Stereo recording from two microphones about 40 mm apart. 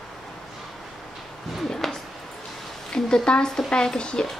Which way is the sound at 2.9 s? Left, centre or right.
Centre.